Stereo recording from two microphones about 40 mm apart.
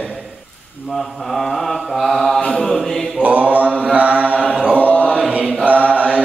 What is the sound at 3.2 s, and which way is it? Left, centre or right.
Mantra, right.